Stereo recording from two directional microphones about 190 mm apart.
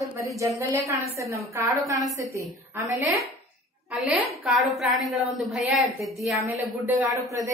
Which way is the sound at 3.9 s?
Centre (ahead or behind).